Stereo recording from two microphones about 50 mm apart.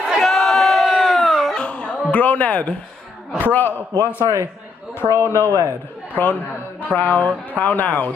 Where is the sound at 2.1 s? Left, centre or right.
Left.